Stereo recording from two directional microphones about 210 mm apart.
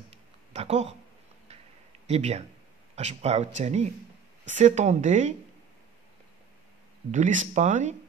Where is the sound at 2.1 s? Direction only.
30° right (ahead or behind).